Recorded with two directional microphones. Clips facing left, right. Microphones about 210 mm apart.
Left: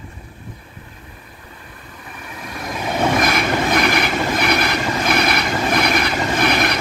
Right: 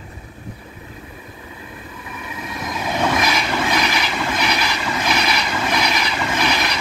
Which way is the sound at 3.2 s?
55° left (ahead or behind).